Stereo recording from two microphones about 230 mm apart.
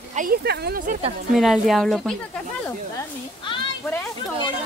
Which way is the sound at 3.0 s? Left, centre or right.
Centre.